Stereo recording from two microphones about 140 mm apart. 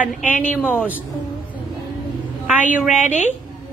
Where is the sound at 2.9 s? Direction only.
55° left (ahead or behind).